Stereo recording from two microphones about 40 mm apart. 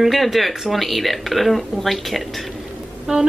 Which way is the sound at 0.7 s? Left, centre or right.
Centre.